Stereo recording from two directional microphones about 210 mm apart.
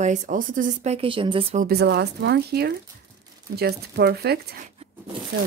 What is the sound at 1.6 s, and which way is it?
Speech, 50° right (ahead or behind).